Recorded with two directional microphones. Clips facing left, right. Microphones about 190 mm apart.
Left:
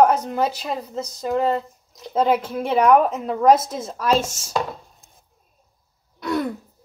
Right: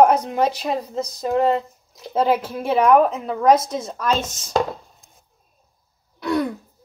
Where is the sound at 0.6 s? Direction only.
35° right (ahead or behind).